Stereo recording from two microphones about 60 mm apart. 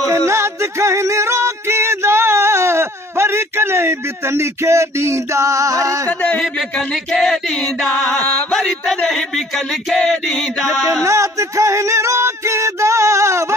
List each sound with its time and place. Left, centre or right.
0.1 s music: right
6.0 s a sound: left
6.9 s music: centre
8.5 s a sound: centre
9.0 s music: centre
11.1 s music: right